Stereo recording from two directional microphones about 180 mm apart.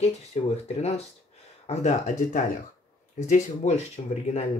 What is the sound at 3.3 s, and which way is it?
Speech, 40° left (ahead or behind).